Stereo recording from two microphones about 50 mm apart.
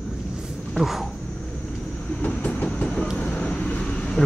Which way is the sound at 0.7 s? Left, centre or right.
Centre.